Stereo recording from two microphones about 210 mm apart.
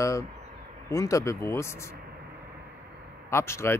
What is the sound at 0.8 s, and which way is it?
Speech, 15° left (ahead or behind).